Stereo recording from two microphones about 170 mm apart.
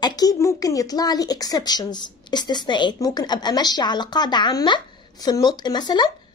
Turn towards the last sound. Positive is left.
turn(degrees=25)  # may be behind; listen again after turning